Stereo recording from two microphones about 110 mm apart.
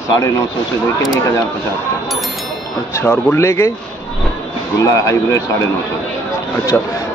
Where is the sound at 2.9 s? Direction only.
25° left (ahead or behind).